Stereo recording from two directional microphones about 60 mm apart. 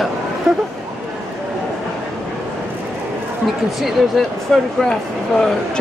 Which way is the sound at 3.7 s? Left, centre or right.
Centre.